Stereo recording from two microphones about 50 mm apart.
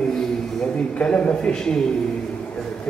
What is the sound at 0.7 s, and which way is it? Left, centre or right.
A man's voice, left.